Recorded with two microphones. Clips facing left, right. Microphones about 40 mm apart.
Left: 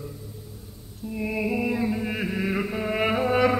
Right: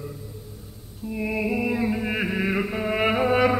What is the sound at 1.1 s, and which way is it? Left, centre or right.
Chant, centre.